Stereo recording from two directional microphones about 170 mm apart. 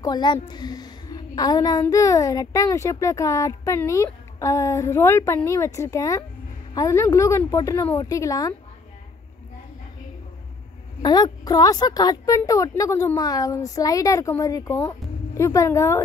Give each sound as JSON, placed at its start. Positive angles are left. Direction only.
{"t": 0.0, "sound": "a woman's voice", "side_deg": 25}
{"t": 11.0, "sound": "a woman's voice", "side_deg": 25}